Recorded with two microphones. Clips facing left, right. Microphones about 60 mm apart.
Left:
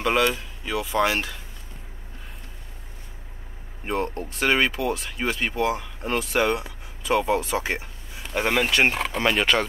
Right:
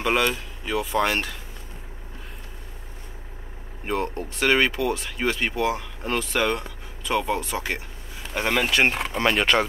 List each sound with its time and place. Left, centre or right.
0.0 s speech: centre
3.8 s speech: centre; by 7.8 s left
8.4 s speech: centre